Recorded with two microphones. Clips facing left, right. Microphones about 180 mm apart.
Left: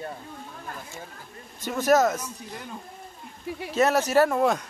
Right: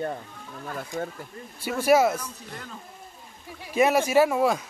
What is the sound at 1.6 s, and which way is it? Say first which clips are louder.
Speech: right 1 dB; 10° right (ahead or behind).